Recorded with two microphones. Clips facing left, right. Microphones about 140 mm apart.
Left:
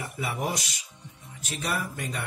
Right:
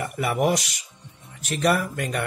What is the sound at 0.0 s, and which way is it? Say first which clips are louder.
Speech: right 8 dB; 65° right (ahead or behind).